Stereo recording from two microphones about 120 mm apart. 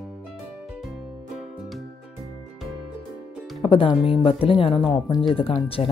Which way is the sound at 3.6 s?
45° left (ahead or behind).